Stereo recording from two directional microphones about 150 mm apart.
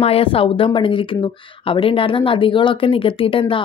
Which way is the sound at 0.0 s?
40° left (ahead or behind).